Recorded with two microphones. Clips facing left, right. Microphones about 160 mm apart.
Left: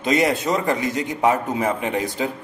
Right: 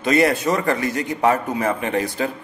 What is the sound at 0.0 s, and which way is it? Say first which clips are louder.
A man's voice: right 2 dB; 20° left (ahead or behind).